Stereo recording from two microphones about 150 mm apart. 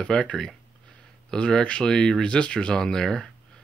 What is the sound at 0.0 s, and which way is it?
Speech, 5° left (ahead or behind).